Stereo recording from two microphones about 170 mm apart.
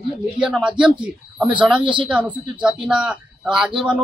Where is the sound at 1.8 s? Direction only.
30° right (ahead or behind).